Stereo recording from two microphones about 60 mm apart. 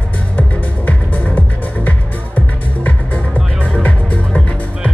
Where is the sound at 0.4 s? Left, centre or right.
Left.